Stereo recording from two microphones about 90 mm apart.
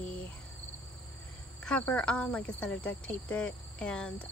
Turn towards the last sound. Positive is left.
turn(degrees=10)  # may be behind; listen again after turning